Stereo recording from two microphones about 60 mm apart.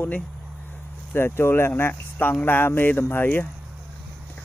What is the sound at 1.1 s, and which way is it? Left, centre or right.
Speech, left.